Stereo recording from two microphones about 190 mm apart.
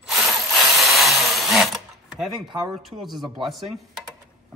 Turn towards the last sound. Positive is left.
turn(degrees=0)  # may be behind; listen again after turning